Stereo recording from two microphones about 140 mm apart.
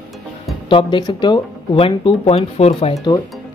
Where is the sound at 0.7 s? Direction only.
35° left (ahead or behind).